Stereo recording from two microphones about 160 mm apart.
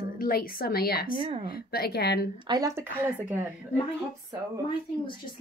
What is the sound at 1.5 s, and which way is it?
Speech, 75° left (ahead or behind).